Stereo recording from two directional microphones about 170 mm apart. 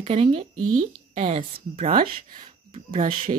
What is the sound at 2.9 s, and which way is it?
Speech, 55° right (ahead or behind).